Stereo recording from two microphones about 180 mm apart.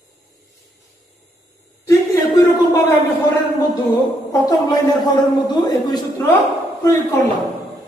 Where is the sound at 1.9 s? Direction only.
15° left (ahead or behind).